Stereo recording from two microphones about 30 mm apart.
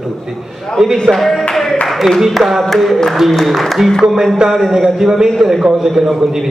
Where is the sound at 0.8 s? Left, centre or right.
Right.